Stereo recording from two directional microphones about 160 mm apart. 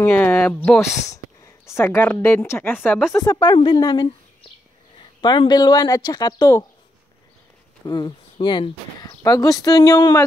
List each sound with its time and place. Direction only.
0.0 s speech: 10° left (ahead or behind)
0.7 s a woman's voice: 20° left (ahead or behind)
3.1 s speech: 25° left (ahead or behind)
7.8 s speech: 25° left (ahead or behind)